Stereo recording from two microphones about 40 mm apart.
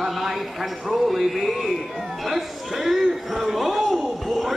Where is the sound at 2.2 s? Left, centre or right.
Centre.